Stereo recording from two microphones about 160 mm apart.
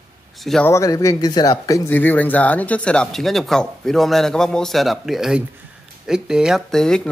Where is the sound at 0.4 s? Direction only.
Centre (ahead or behind).